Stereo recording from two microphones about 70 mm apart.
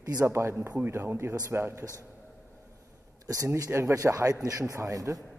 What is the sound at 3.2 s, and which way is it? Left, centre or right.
Speech, right.